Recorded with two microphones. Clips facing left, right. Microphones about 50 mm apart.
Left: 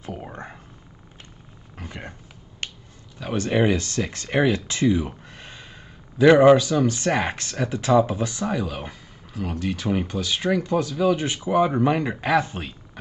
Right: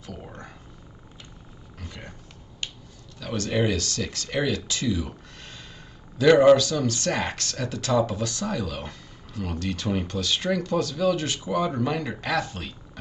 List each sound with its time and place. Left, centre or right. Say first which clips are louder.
0.0 s speech: left 5 dB; left
1.8 s a sound: left 5 dB; left
3.2 s speech: left 4 dB; left